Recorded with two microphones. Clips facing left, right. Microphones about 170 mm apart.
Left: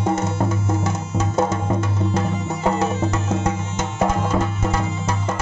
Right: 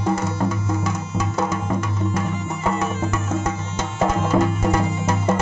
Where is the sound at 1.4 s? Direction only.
25° left (ahead or behind).